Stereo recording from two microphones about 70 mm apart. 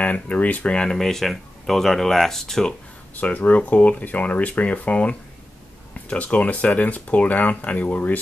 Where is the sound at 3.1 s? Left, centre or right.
Left.